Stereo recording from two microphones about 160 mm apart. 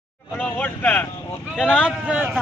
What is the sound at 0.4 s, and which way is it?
Speech, 10° left (ahead or behind).